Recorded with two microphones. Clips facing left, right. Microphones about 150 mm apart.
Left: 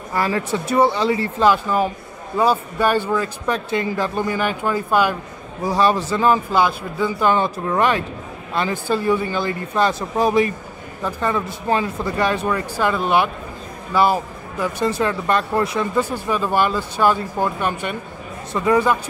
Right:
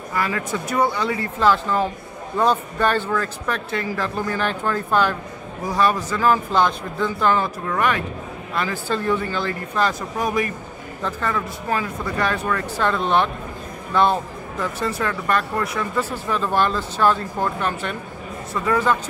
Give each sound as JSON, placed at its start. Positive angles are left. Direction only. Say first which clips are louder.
{"t": 0.1, "sound": "speech", "louder": "left 3 dB", "side_deg": 30}
{"t": 1.4, "sound": "speech", "louder": "left 1 dB", "side_deg": 15}
{"t": 5.7, "sound": "speech", "louder": "left 3 dB", "side_deg": 30}
{"t": 6.5, "sound": "speech", "louder": "left 1 dB", "side_deg": 10}
{"t": 7.3, "sound": "speech", "louder": "left 3 dB", "side_deg": 25}
{"t": 8.8, "sound": "speech", "louder": "left 3 dB", "side_deg": 10}
{"t": 11.0, "sound": "speech", "louder": "left 3 dB", "side_deg": 15}
{"t": 14.8, "sound": "speech", "louder": "left 6 dB", "side_deg": 25}
{"t": 16.0, "sound": "speech", "louder": "left 2 dB", "side_deg": 15}